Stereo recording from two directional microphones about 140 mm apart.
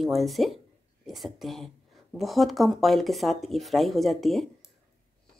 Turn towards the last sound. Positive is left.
turn(degrees=0)  # may be behind; listen again after turning